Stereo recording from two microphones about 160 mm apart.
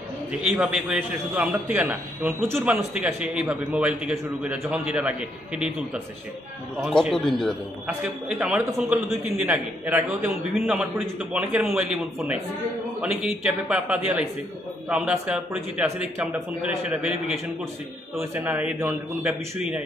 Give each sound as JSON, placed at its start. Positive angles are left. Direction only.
{"t": 0.3, "sound": "a man's voice", "side_deg": -5}
{"t": 6.8, "sound": "a man's voice", "side_deg": 5}
{"t": 7.8, "sound": "a man's voice", "side_deg": -10}
{"t": 18.3, "sound": "a man's voice", "side_deg": -10}